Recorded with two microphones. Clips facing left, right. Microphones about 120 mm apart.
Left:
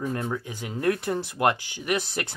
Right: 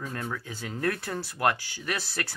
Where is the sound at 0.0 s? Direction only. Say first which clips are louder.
Left 6 dB; 20° left (ahead or behind).